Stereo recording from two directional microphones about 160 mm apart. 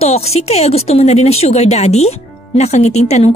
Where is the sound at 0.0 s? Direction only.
40° left (ahead or behind).